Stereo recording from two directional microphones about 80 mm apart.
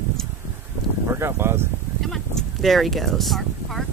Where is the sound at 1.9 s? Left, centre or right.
Centre.